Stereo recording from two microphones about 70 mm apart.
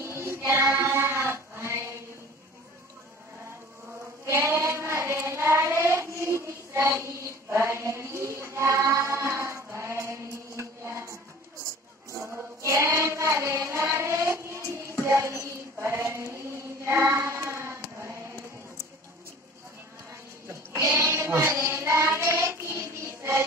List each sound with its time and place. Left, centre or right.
0.0 s child singing: right
4.3 s child singing: right
12.6 s child singing: right
20.1 s goat: right
20.9 s child singing: right